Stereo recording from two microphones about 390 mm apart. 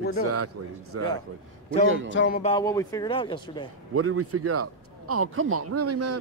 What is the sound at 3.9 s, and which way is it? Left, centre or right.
Speech, right.